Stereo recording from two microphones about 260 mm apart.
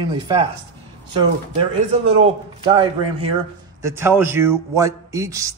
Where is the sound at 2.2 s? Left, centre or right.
Right.